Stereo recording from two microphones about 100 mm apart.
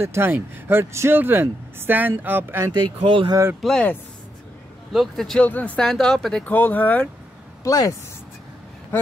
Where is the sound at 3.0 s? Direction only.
60° right (ahead or behind).